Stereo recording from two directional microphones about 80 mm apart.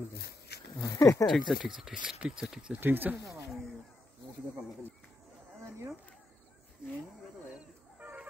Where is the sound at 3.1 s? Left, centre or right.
Right.